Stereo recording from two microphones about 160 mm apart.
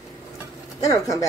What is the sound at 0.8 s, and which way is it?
Speech, 20° left (ahead or behind).